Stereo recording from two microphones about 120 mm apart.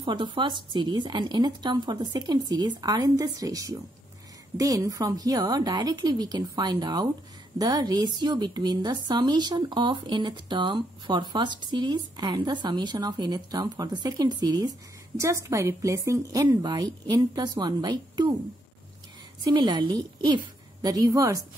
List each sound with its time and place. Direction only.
0.0 s a woman's voice: 40° right (ahead or behind)
19.5 s a woman's voice: 40° right (ahead or behind)